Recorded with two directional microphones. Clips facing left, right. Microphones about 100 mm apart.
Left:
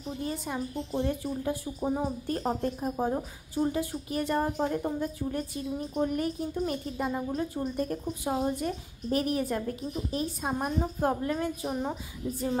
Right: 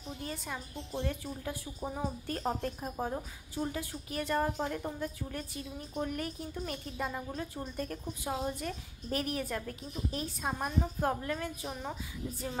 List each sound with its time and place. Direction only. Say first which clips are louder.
0.2 s a woman's voice: left 8 dB; 20° left (ahead or behind)